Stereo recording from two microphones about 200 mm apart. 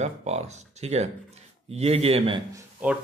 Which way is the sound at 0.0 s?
35° right (ahead or behind).